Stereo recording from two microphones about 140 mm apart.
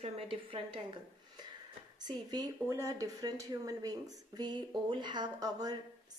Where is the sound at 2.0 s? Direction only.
25° right (ahead or behind).